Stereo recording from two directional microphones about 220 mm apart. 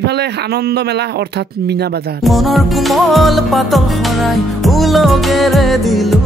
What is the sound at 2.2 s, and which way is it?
Music, centre (ahead or behind).